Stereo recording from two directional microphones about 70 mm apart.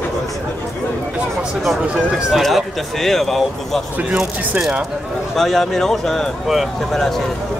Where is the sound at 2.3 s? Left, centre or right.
Centre.